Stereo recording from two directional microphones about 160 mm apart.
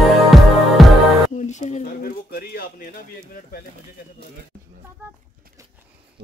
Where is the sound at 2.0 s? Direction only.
75° left (ahead or behind).